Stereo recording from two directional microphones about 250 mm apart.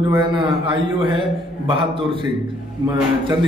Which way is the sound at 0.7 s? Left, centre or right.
Centre.